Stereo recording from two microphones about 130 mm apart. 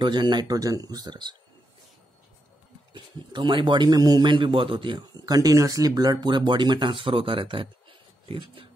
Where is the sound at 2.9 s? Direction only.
35° right (ahead or behind).